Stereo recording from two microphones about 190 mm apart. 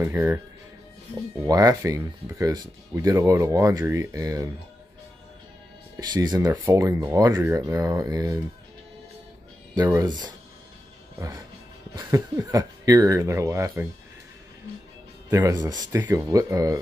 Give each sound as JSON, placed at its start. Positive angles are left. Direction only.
{"t": 0.0, "sound": "speech", "side_deg": -15}
{"t": 1.4, "sound": "speech", "side_deg": -20}
{"t": 5.9, "sound": "speech", "side_deg": -20}
{"t": 9.8, "sound": "speech", "side_deg": -20}
{"t": 15.2, "sound": "speech", "side_deg": -15}